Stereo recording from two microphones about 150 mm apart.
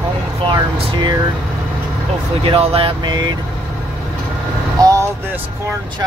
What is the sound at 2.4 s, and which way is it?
Vehicle, 40° right (ahead or behind).